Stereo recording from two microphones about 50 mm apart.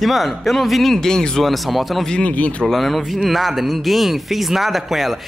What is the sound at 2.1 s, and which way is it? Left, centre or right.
Speech, left.